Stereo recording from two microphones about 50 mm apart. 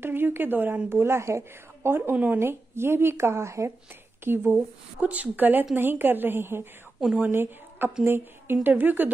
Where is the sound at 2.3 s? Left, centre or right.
Right.